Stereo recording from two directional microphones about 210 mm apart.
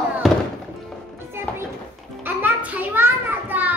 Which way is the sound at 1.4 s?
10° right (ahead or behind).